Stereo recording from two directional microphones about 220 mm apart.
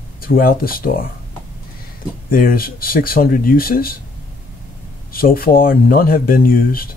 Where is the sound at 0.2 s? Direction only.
40° left (ahead or behind).